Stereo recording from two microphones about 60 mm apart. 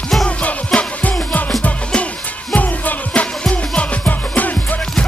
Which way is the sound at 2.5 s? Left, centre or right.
Left.